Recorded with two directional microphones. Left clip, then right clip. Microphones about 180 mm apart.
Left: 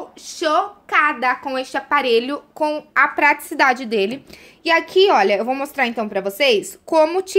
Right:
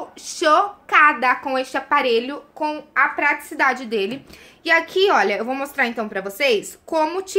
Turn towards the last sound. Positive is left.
turn(degrees=45)  # may be behind; listen again after turning